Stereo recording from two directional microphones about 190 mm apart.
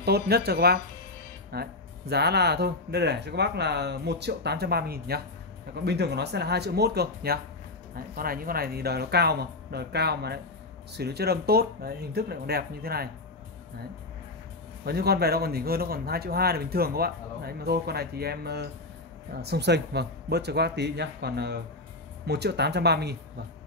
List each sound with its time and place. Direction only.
0.0 s speech: 60° right (ahead or behind)
14.9 s speech: 55° right (ahead or behind)